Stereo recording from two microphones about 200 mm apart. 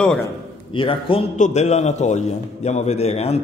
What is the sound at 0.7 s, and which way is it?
A man's voice, 25° left (ahead or behind).